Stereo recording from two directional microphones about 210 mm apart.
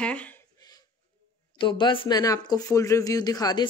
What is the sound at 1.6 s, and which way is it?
Speech, 20° left (ahead or behind).